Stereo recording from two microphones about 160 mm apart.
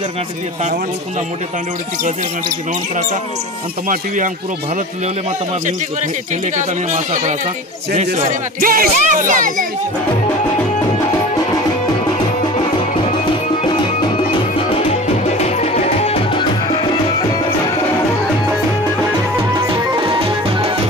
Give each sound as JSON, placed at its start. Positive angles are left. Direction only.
{"t": 6.5, "sound": "speech", "side_deg": -50}
{"t": 15.2, "sound": "music", "side_deg": 45}